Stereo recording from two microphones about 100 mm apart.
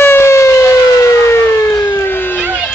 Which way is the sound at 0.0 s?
25° left (ahead or behind).